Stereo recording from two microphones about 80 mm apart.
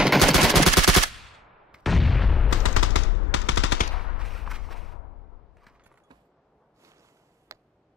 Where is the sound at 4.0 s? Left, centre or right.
Centre.